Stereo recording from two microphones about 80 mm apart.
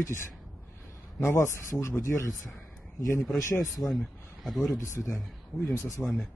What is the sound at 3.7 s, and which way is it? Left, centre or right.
Speech, centre.